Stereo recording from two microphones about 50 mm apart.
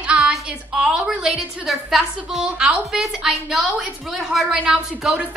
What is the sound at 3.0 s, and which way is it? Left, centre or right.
A woman's voice, centre.